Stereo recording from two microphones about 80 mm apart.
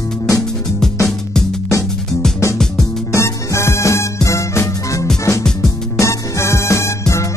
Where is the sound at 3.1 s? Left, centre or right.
Left.